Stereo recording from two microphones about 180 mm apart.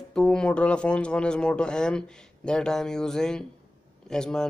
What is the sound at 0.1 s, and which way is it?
Speech, 5° left (ahead or behind).